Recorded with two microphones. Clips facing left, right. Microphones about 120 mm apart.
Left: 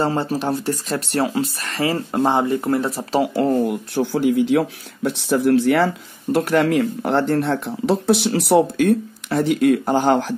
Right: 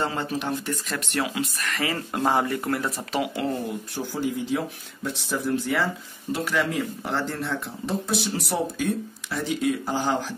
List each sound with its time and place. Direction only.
0.0 s speech: 35° left (ahead or behind)
3.6 s speech: 65° left (ahead or behind)
6.3 s speech: 55° left (ahead or behind)